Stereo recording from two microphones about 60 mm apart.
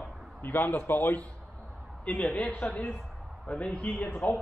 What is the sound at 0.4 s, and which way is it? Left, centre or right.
A man's voice, left.